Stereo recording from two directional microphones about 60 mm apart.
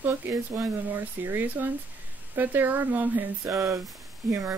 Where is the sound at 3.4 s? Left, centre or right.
Right.